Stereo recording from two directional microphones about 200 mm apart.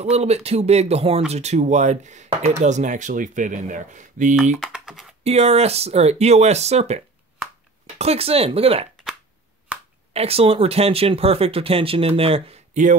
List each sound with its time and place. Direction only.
0.0 s speech: 30° right (ahead or behind)
4.6 s typing: centre (ahead or behind)
5.2 s speech: 30° right (ahead or behind)
8.0 s speech: 30° right (ahead or behind)
9.7 s finger snapping: 5° right (ahead or behind)
10.1 s speech: 30° right (ahead or behind)